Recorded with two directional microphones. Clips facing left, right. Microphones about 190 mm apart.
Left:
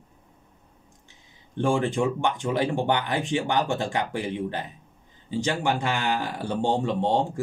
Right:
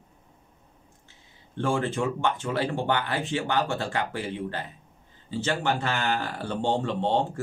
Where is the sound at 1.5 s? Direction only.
15° left (ahead or behind).